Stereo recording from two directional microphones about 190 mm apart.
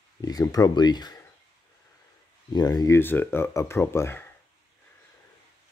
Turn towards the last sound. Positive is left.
turn(degrees=10)  # may be behind; listen again after turning